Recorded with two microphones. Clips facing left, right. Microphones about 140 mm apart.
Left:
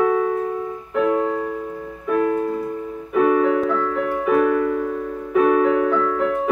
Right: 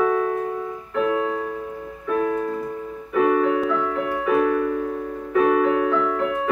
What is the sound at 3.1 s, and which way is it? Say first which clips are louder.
Music: left 2 dB; 10° left (ahead or behind).